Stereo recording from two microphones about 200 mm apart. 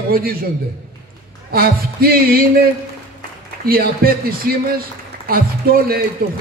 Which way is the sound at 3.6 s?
45° right (ahead or behind).